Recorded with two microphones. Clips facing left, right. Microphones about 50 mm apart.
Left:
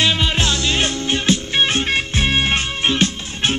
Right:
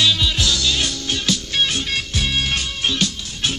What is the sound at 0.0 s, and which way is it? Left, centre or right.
Music, left.